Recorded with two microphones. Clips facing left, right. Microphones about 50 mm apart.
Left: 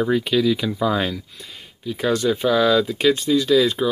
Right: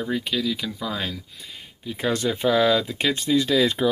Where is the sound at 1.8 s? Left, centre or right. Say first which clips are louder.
Left 4 dB; right.